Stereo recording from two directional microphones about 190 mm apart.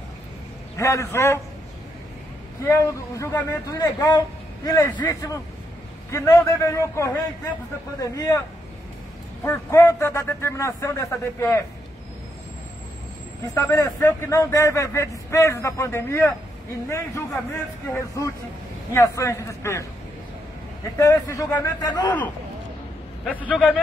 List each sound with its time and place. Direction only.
0.7 s a man's voice: 15° left (ahead or behind)
2.6 s a man's voice: 15° left (ahead or behind)
9.4 s a man's voice: 15° left (ahead or behind)
13.6 s a man's voice: 15° left (ahead or behind)
17.5 s a man's voice: 15° left (ahead or behind)
21.0 s a man's voice: 15° left (ahead or behind)
23.4 s a man's voice: 5° right (ahead or behind)